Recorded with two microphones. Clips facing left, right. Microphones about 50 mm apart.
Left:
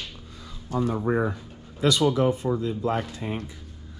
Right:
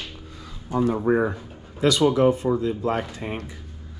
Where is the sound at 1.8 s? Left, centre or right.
Right.